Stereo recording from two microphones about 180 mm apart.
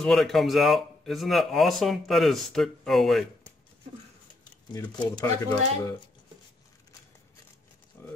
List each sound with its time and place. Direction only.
0.0 s speech: centre (ahead or behind)
4.9 s speech: 25° left (ahead or behind)
8.0 s a sound: 15° left (ahead or behind)